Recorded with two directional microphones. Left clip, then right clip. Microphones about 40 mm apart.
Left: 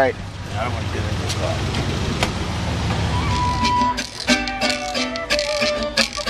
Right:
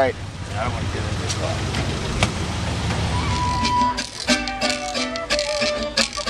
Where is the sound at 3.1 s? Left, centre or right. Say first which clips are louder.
Left 2 dB; centre.